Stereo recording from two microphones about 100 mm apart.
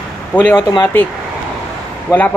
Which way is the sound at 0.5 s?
40° left (ahead or behind).